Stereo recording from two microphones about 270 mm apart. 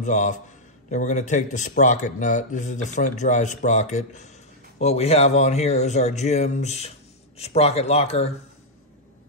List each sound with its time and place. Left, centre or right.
0.0 s speech: left